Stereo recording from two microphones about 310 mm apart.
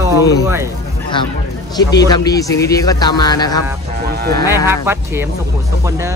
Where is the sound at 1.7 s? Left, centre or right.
Centre.